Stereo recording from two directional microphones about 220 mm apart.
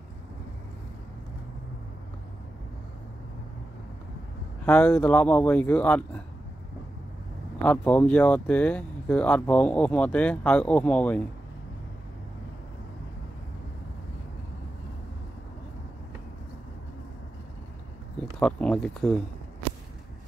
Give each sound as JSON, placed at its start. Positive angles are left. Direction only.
{"t": 4.6, "sound": "speech", "side_deg": 5}
{"t": 7.6, "sound": "speech", "side_deg": 5}
{"t": 18.4, "sound": "speech", "side_deg": 5}